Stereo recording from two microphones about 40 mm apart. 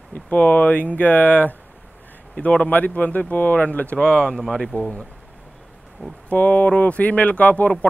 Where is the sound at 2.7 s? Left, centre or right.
Left.